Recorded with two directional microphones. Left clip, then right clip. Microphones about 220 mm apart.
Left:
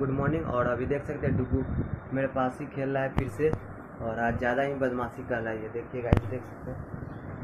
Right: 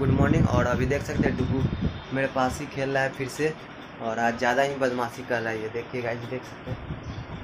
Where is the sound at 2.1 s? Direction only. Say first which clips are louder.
Right 3 dB; 15° right (ahead or behind).